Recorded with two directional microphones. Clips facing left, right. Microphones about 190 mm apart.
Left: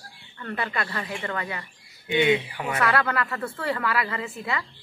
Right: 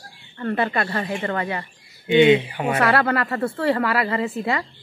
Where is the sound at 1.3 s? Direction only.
30° right (ahead or behind).